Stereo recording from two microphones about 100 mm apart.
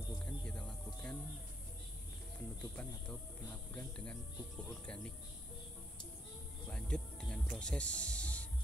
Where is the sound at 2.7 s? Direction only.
10° left (ahead or behind).